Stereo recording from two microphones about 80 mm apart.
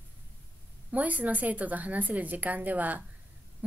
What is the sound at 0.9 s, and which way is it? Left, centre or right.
A woman's voice, centre.